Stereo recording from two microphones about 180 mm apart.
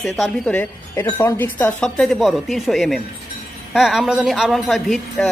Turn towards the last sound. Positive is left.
turn(degrees=0)  # may be behind; listen again after turning